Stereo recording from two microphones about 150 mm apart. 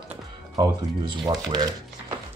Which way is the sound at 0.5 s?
25° right (ahead or behind).